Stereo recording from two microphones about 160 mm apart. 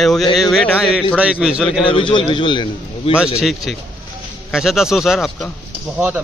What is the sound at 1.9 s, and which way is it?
A man's voice, 30° left (ahead or behind).